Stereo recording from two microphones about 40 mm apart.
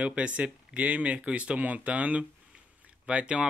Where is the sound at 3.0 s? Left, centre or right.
Right.